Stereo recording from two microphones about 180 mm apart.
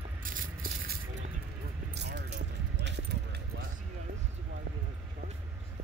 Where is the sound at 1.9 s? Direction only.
70° right (ahead or behind).